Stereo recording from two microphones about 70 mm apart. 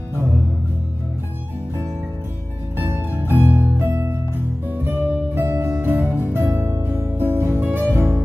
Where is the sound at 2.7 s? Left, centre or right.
Right.